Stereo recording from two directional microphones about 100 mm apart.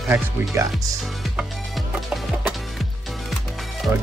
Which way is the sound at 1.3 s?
5° right (ahead or behind).